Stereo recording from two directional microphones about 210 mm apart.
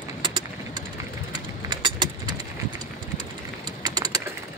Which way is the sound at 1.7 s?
20° right (ahead or behind).